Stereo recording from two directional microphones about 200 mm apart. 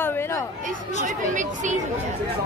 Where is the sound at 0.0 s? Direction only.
10° left (ahead or behind).